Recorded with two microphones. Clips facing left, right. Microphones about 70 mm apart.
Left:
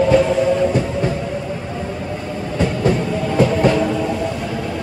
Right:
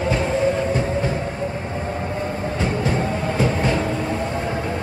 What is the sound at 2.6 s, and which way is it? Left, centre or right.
Train, right.